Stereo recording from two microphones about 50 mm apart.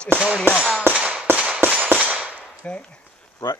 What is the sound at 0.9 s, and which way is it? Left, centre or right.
Firecracker, centre.